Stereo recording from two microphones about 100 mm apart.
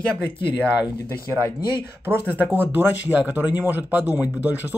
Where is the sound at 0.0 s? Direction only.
10° left (ahead or behind).